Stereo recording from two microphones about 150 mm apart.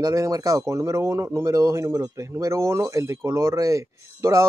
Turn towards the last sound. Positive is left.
turn(degrees=-20)  # may be behind; listen again after turning